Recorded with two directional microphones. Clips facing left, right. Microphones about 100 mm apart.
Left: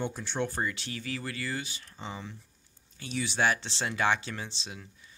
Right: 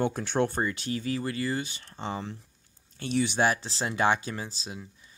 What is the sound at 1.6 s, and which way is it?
Speech, 45° right (ahead or behind).